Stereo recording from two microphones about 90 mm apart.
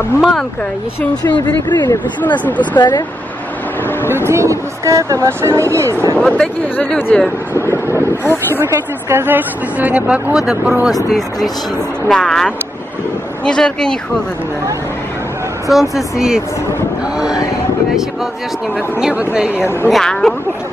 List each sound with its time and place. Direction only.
0.2 s speech: 5° left (ahead or behind)
1.2 s speech: 55° left (ahead or behind)
2.4 s speech: 15° left (ahead or behind)
2.7 s speech: 55° left (ahead or behind)
4.1 s speech: 30° right (ahead or behind)
6.1 s speech: 10° left (ahead or behind)
7.5 s vehicle: 30° left (ahead or behind)
8.2 s speech: 25° left (ahead or behind)
8.6 s speech: 25° right (ahead or behind); by 10.9 s 10° right (ahead or behind)
11.1 s speech: centre (ahead or behind)
13.5 s speech: 10° left (ahead or behind)
15.7 s speech: centre (ahead or behind)
18.9 s speech: 10° right (ahead or behind)
19.9 s speech: 5° left (ahead or behind)